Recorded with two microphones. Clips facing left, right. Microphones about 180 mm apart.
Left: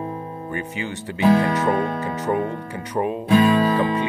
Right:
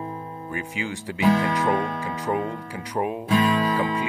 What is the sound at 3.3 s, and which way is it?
Music, 50° left (ahead or behind).